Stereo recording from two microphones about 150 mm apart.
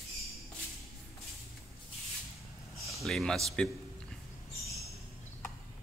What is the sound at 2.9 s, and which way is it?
Speech, centre (ahead or behind).